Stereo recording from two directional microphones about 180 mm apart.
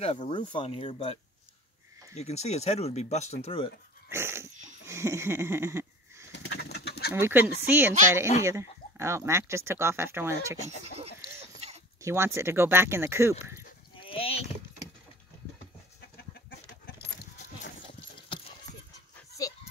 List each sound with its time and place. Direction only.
0.0 s speech: 35° left (ahead or behind)
4.1 s speech: 15° right (ahead or behind)
4.8 s a sound: 15° right (ahead or behind)
6.3 s bird: 65° left (ahead or behind)
7.2 s speech: 10° right (ahead or behind)
12.0 s speech: 15° right (ahead or behind)
13.9 s a sound: 30° left (ahead or behind)
19.4 s dog: 20° left (ahead or behind)